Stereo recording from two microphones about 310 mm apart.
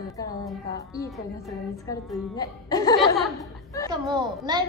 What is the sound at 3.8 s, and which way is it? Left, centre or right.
Speech, centre.